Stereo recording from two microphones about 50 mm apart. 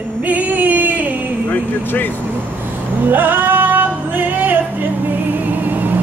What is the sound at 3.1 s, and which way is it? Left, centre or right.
Music, right.